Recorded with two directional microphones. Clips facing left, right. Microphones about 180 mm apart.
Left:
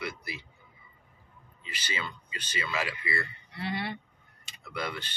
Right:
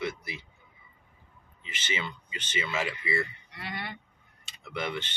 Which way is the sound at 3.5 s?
30° left (ahead or behind).